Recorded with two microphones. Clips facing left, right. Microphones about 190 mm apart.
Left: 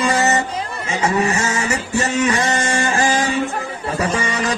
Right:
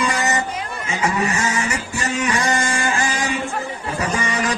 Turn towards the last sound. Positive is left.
turn(degrees=30)  # may be behind; listen again after turning